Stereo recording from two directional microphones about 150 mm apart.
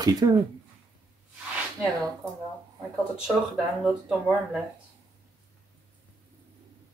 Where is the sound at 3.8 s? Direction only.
5° right (ahead or behind).